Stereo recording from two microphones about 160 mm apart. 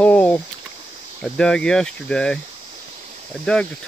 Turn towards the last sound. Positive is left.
turn(degrees=5)  # may be behind; listen again after turning